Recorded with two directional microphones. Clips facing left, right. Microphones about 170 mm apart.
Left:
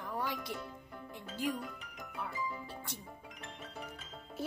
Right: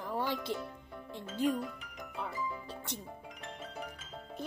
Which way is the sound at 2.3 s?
Centre (ahead or behind).